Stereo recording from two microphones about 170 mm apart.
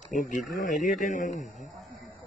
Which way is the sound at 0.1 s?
50° left (ahead or behind).